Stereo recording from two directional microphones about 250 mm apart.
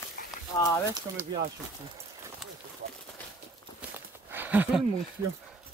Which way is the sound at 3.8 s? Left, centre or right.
Centre.